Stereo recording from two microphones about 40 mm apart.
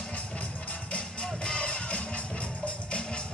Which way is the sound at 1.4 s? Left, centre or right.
Left.